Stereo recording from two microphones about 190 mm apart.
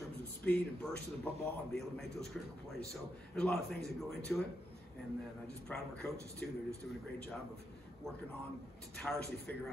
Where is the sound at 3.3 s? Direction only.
5° left (ahead or behind).